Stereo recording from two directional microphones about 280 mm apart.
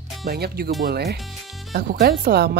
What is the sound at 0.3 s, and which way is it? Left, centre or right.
Speech, right.